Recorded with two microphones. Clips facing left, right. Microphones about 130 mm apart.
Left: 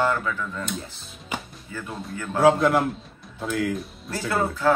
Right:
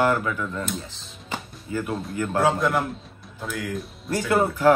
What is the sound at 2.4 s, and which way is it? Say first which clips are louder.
Speech: left 5 dB; 25° left (ahead or behind).